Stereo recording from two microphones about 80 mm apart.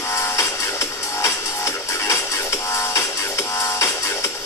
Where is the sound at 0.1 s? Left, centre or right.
Left.